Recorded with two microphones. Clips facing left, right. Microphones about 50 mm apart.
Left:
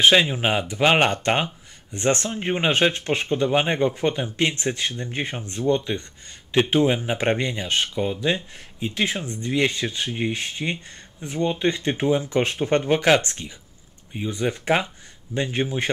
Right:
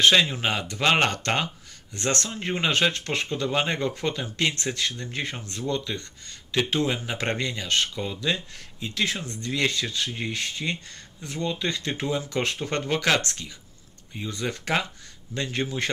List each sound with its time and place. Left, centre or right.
0.0 s speech: centre